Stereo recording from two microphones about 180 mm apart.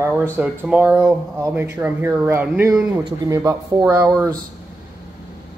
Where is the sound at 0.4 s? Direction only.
10° right (ahead or behind).